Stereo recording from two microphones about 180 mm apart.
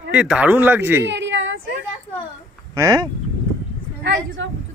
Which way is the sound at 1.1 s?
85° right.